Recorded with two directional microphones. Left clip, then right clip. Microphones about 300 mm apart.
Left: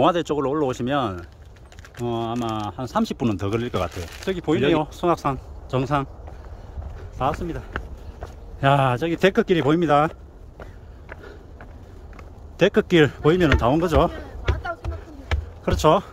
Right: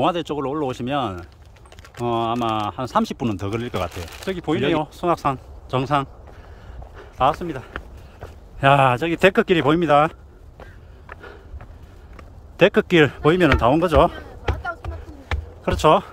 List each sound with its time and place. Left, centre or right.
0.0 s speech: centre
3.9 s speech: right
4.3 s speech: centre
12.5 s speech: centre
15.6 s speech: centre